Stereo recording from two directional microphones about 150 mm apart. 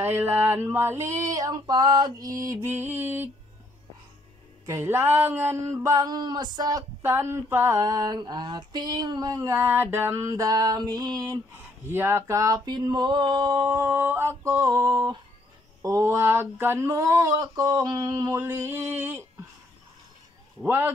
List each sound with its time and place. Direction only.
0.0 s male singing: 15° right (ahead or behind)
4.6 s speech: 15° right (ahead or behind)
20.6 s male singing: 15° right (ahead or behind)